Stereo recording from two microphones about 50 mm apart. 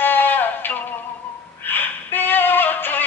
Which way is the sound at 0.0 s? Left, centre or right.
Left.